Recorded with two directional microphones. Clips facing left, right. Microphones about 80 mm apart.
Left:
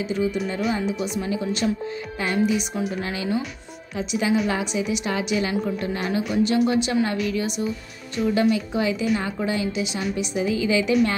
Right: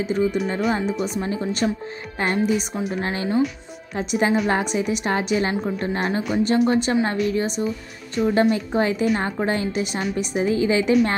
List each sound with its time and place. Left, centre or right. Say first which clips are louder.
0.0 s a woman's voice: right 3 dB; right
3.9 s a woman's voice: right 2 dB; right